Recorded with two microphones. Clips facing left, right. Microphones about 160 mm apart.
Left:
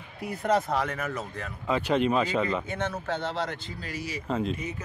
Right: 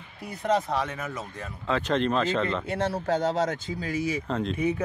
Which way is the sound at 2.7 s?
35° right (ahead or behind).